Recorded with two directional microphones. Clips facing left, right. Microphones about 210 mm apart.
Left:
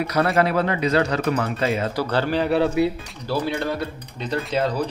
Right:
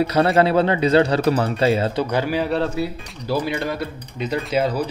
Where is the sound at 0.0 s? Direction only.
30° right (ahead or behind).